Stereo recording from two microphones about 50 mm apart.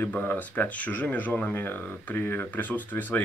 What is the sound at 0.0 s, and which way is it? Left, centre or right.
Speech, left.